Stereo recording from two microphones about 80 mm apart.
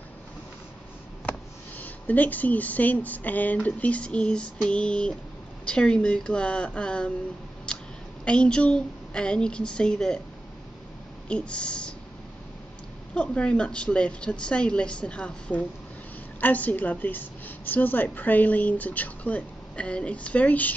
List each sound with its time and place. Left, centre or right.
1.8 s a woman's voice: left
8.3 s speech: centre
11.2 s speech: centre
13.1 s a woman's voice: centre